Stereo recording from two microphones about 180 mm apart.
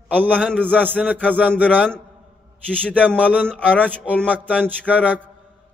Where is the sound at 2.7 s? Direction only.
5° left (ahead or behind).